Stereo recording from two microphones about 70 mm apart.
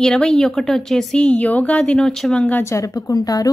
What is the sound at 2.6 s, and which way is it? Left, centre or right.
Speech, left.